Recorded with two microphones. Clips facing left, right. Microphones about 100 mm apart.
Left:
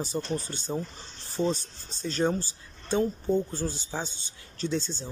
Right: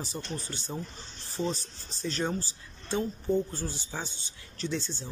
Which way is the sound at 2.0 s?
30° left (ahead or behind).